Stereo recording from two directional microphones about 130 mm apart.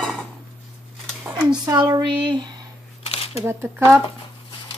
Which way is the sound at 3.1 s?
50° left (ahead or behind).